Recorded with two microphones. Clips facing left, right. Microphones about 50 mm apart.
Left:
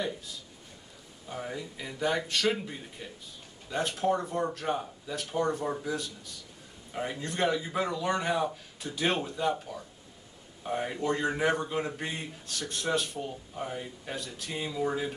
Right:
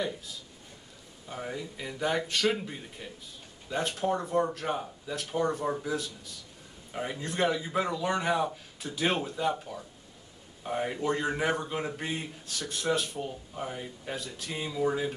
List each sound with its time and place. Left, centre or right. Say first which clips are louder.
1.3 s a man's voice: even; centre